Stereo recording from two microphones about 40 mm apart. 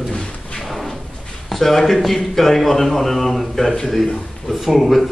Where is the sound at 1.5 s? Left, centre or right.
Centre.